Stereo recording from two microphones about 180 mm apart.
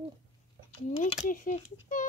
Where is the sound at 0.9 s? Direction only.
45° left (ahead or behind).